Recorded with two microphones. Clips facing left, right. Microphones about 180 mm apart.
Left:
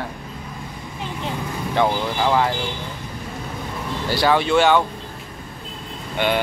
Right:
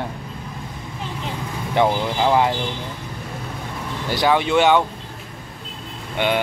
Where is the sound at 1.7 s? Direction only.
20° right (ahead or behind).